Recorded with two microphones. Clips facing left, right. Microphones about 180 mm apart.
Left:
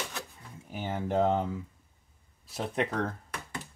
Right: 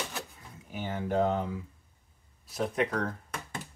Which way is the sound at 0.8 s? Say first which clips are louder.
Left 1 dB; 25° left (ahead or behind).